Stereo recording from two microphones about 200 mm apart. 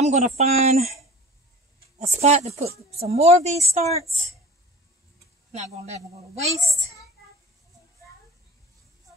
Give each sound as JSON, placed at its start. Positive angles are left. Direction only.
{"t": 0.0, "sound": "speech", "side_deg": -35}
{"t": 5.5, "sound": "speech", "side_deg": -35}